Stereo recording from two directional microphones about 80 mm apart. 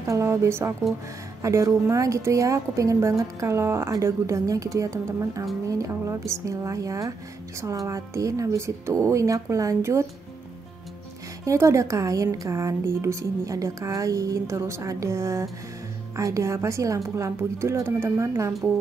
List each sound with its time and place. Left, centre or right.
0.0 s a woman's voice: right
11.4 s speech: right